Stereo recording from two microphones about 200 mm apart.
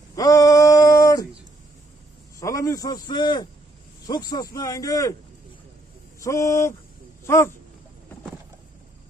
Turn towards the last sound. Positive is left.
turn(degrees=15)  # may be behind; listen again after turning